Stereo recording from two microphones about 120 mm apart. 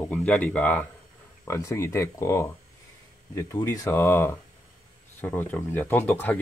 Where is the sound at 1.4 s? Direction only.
25° left (ahead or behind).